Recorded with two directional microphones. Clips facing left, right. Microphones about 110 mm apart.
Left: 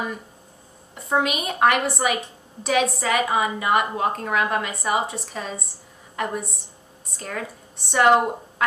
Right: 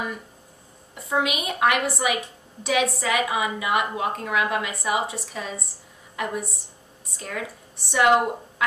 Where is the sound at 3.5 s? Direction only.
45° left (ahead or behind).